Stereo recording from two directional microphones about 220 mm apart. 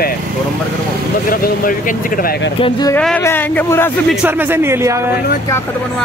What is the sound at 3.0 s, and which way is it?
Speech, 5° left (ahead or behind).